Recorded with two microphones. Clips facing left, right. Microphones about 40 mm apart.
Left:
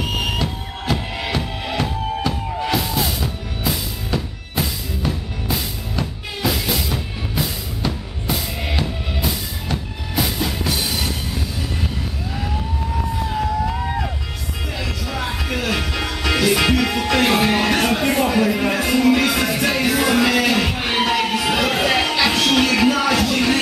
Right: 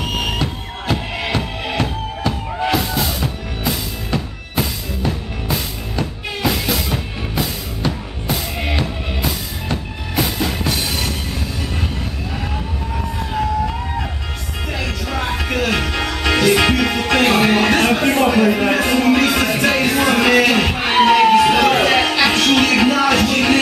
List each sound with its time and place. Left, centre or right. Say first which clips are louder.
0.0 s music: right 1 dB; centre
2.3 s music: right 7 dB; centre
8.5 s music: right 3 dB; centre
9.2 s music: right 1 dB; centre
12.4 s police car: left 2 dB; centre
14.8 s music: right 3 dB; centre